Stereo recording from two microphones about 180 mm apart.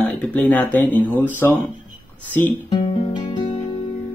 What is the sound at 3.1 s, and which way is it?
Music, 25° left (ahead or behind).